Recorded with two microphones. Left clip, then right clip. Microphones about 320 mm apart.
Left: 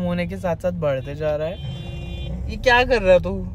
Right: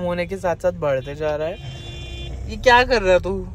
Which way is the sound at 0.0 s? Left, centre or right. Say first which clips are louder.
Right 3 dB; centre.